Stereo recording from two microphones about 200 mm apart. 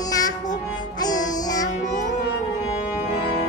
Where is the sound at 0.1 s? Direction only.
20° left (ahead or behind).